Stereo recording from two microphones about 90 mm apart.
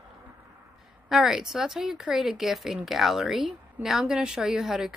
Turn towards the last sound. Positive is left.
turn(degrees=-5)  # may be behind; listen again after turning